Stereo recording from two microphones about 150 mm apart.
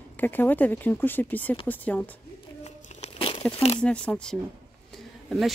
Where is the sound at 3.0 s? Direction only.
35° left (ahead or behind).